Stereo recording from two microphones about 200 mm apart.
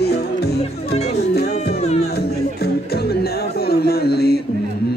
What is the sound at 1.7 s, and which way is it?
Music, 35° left (ahead or behind).